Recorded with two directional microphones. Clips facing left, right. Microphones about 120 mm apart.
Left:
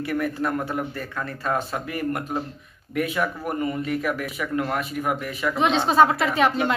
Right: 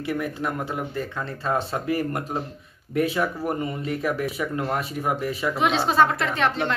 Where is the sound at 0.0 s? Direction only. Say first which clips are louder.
Left 2 dB; 15° right (ahead or behind); by 5.5 s 30° right (ahead or behind).